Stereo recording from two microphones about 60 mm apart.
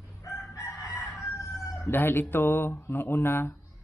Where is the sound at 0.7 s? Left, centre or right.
Left.